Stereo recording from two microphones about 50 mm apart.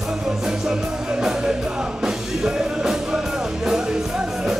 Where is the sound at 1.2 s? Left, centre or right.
Centre.